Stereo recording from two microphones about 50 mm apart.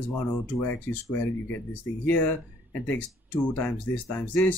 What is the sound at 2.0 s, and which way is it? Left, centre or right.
Speech, left.